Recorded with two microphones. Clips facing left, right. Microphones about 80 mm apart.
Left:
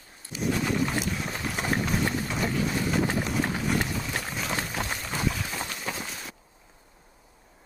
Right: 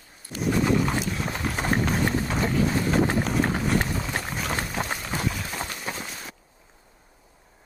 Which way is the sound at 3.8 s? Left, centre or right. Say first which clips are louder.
Right 2 dB; right.